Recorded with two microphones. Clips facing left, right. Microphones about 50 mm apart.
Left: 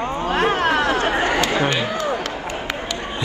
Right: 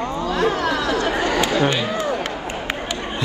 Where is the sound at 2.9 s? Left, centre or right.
Right.